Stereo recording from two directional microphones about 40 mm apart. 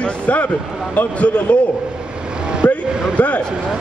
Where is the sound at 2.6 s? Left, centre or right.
Left.